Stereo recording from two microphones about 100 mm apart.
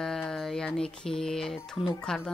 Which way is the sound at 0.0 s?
5° left (ahead or behind).